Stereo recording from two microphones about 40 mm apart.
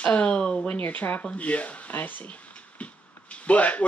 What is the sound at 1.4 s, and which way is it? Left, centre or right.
Speech, left.